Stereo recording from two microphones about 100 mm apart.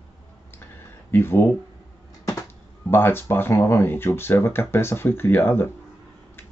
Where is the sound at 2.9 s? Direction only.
20° left (ahead or behind).